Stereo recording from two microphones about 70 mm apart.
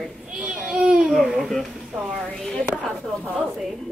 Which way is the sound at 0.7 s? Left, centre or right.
Centre.